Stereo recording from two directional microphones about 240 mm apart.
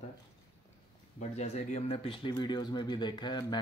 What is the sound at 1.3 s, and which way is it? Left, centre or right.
Speech, left.